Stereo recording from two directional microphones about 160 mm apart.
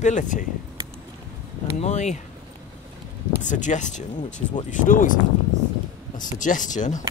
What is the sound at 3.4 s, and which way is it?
Speech, 50° left (ahead or behind).